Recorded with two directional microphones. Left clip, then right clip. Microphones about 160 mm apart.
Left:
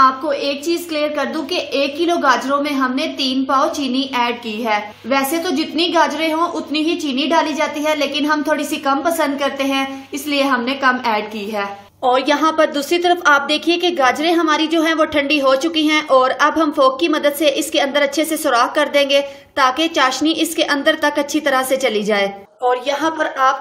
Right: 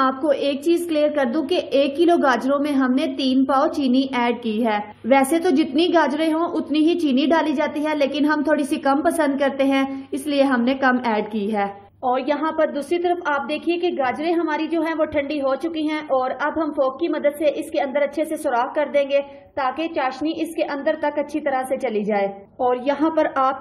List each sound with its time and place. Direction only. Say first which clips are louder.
0.0 s a woman's voice: left 5 dB; 45° right (ahead or behind)
12.0 s a woman's voice: left 6 dB; 10° left (ahead or behind)
22.7 s a woman's voice: left 4 dB; 5° right (ahead or behind)